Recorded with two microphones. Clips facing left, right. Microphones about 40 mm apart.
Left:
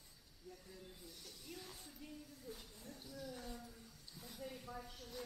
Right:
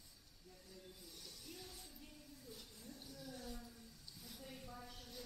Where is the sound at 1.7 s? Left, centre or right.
Centre.